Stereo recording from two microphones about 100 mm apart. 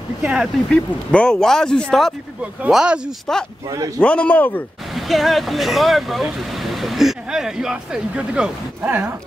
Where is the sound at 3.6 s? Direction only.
35° right (ahead or behind).